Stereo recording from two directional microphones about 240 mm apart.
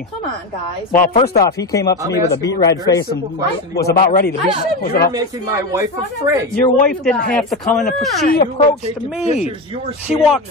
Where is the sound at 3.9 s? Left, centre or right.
Left.